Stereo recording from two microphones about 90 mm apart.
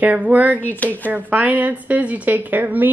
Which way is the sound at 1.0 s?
20° right (ahead or behind).